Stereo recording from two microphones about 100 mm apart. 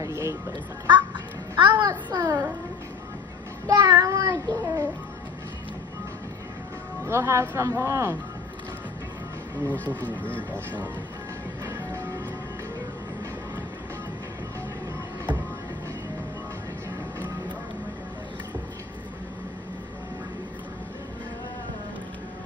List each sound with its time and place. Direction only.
0.0 s music: 30° right (ahead or behind)
0.8 s a child's voice: 45° right (ahead or behind)
3.6 s child singing: 40° right (ahead or behind)
7.1 s speech: 30° right (ahead or behind)
9.9 s speech: 15° left (ahead or behind)
11.6 s music: 30° right (ahead or behind)